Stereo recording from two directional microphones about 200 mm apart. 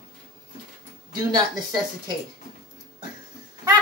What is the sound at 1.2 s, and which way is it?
Speech, 20° right (ahead or behind).